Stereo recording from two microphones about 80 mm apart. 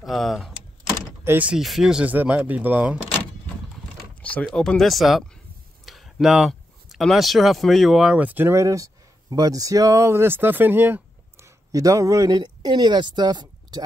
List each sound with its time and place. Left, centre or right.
0.0 s speech: centre
1.3 s speech: right
1.6 s speech: centre
2.0 s speech: centre
4.2 s a sound: centre
4.5 s speech: centre
8.2 s speech: right
8.5 s speech: right
11.4 s speech: right